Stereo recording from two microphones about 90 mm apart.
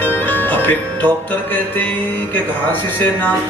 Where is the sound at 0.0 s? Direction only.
20° left (ahead or behind).